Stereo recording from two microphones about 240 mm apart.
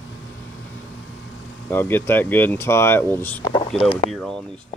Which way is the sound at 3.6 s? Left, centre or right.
Left.